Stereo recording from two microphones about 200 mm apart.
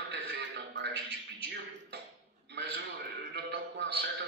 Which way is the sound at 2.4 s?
55° right (ahead or behind).